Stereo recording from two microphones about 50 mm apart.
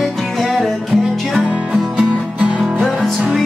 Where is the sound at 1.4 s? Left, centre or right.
Right.